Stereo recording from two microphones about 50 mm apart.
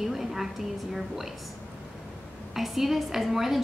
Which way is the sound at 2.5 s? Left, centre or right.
Centre.